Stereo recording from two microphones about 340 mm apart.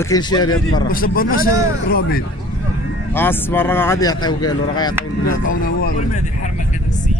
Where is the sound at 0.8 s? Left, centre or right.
Left.